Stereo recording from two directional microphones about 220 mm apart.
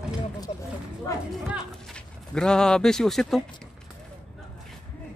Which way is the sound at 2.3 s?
5° left (ahead or behind).